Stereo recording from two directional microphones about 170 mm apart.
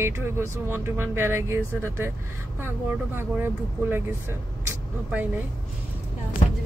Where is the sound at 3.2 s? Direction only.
15° right (ahead or behind).